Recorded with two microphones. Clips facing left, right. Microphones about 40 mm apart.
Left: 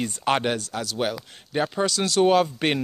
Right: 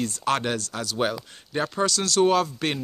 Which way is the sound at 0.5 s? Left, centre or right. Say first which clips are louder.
Left 1 dB; centre.